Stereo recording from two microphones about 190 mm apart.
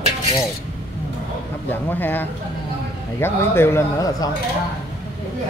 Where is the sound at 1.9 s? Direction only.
10° left (ahead or behind).